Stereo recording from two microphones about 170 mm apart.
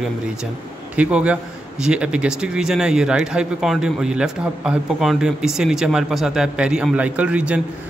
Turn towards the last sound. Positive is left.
turn(degrees=-5)  # may be behind; listen again after turning